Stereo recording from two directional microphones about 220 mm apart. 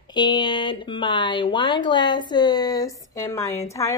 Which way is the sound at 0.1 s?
20° left (ahead or behind).